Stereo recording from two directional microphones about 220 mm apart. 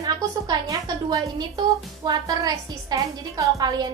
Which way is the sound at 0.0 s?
20° right (ahead or behind).